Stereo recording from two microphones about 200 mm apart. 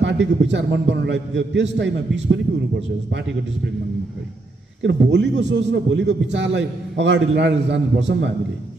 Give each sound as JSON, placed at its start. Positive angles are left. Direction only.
{"t": 0.0, "sound": "a man's voice", "side_deg": -65}
{"t": 4.8, "sound": "a man's voice", "side_deg": -60}